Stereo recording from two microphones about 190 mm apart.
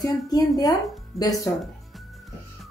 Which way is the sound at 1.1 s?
Centre (ahead or behind).